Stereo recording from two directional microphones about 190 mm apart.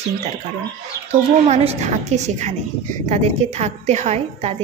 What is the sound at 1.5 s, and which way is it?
Speech, 35° right (ahead or behind).